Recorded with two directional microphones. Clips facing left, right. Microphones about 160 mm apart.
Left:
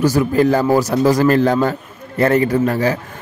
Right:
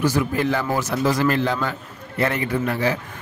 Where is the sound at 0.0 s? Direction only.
40° left (ahead or behind).